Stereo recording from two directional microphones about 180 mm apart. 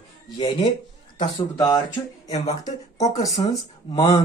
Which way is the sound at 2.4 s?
40° left (ahead or behind).